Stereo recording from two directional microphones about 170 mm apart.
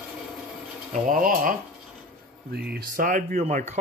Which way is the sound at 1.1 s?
50° right (ahead or behind).